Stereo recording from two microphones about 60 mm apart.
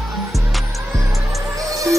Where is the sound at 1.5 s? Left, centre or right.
Right.